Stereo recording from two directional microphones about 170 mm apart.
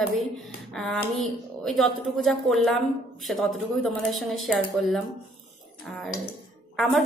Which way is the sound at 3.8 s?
Centre (ahead or behind).